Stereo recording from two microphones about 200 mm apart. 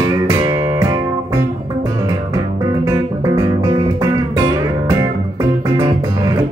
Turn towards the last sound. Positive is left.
turn(degrees=-20)  # may be behind; listen again after turning